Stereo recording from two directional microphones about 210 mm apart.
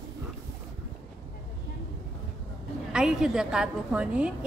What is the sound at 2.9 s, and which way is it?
A woman's voice, 5° right (ahead or behind).